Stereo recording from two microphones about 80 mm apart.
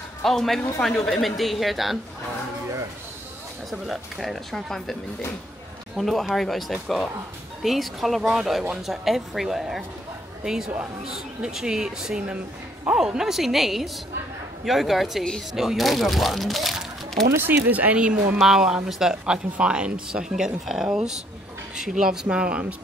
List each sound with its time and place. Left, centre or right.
0.2 s speech: centre
3.7 s speech: centre
5.9 s speech: centre
17.3 s speech: right; by 22.8 s centre